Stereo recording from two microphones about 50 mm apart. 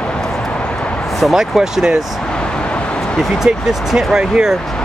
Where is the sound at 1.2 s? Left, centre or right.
Centre.